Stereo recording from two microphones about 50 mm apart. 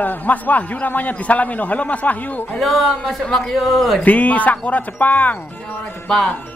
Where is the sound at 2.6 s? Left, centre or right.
Centre.